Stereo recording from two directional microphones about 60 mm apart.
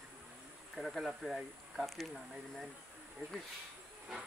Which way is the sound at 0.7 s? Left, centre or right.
Centre.